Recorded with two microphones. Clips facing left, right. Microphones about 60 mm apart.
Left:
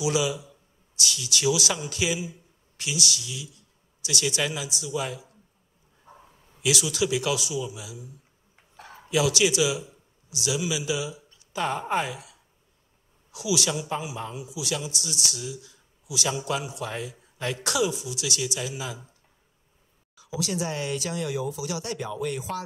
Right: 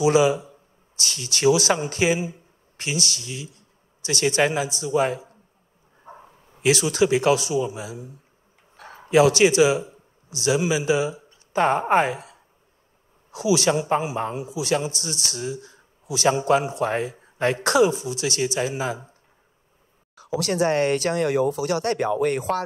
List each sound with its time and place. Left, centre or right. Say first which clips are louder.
0.0 s a man's voice: right 8 dB; right
20.2 s speech: right 7 dB; right